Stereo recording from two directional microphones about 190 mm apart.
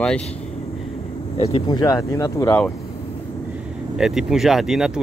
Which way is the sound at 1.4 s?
25° left (ahead or behind).